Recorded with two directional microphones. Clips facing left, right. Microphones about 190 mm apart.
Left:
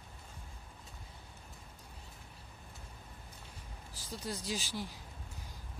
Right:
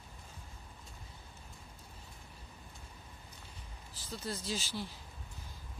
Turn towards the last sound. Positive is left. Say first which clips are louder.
# even
turn(degrees=15)  # may be behind; listen again after turning